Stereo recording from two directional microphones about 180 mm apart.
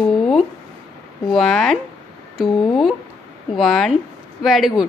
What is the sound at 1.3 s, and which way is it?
Speech, 5° left (ahead or behind).